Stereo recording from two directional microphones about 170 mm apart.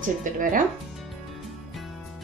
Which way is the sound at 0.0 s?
50° right (ahead or behind).